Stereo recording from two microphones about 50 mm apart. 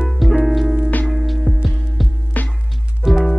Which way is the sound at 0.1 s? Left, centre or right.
Centre.